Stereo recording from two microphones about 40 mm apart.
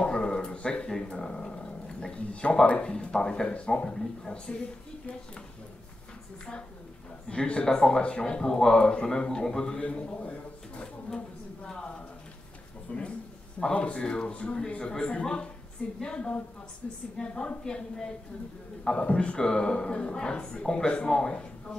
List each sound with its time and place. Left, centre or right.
0.0 s a sound: left
1.0 s speech: left
7.2 s speech: left
9.8 s a man's voice: left
11.6 s a man's voice: left
18.9 s speech: left